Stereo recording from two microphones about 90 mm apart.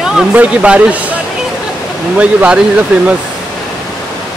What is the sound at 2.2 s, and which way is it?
Speech, 15° right (ahead or behind).